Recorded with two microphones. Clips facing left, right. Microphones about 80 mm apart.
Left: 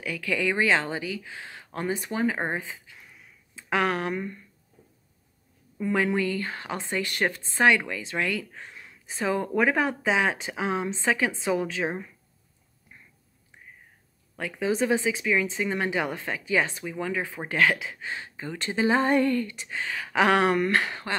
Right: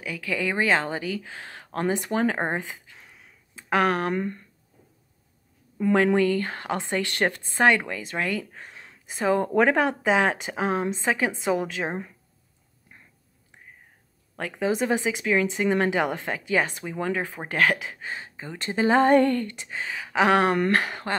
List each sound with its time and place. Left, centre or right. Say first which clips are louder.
0.0 s a woman's voice: left 1 dB; right
2.6 s a sound: right 2 dB; right
3.7 s a woman's voice: right 3 dB; right
5.8 s a woman's voice: right 5 dB; right
9.7 s a woman's voice: right 3 dB; right
10.0 s a woman's voice: right 3 dB; right
14.6 s a woman's voice: even; right
16.0 s a woman's voice: right 3 dB; right
16.4 s a woman's voice: right 1 dB; right
18.9 s a woman's voice: right 6 dB; right
19.9 s a sound: right 1 dB; centre
20.2 s a woman's voice: right 2 dB; right